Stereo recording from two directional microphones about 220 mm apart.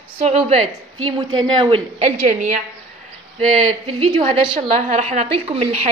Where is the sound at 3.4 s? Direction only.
30° right (ahead or behind).